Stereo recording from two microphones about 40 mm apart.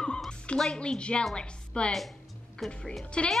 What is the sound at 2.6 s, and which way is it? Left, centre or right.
Speech, centre.